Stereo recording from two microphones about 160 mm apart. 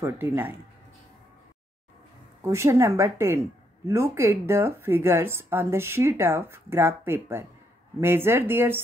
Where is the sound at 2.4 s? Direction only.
20° right (ahead or behind).